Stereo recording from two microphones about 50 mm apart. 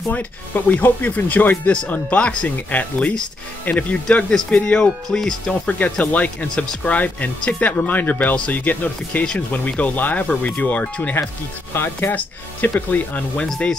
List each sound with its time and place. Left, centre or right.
0.1 s speech: left
1.7 s speech: left
4.8 s speech: centre
5.5 s speech: left
11.7 s speech: left
12.1 s speech: left